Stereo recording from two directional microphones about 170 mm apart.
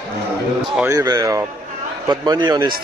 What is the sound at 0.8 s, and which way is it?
A man's voice, 20° right (ahead or behind).